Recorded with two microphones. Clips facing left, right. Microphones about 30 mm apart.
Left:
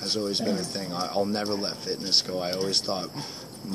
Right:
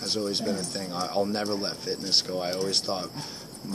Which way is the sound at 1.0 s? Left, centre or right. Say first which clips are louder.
Even; centre.